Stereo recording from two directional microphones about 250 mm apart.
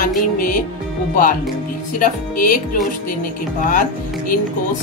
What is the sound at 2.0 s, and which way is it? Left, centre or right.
Music, left.